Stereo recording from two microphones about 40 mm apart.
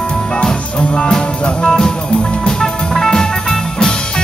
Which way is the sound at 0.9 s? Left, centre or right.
Left.